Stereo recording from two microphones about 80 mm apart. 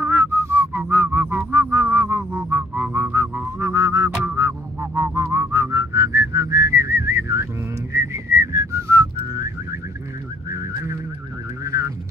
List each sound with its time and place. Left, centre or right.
0.0 s whistling: right
1.5 s music: right
3.5 s a sound: right
4.2 s music: right
7.9 s whistling: right
11.6 s a sound: right